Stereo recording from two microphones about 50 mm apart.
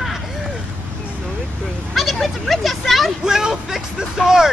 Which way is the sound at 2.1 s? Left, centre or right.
Centre.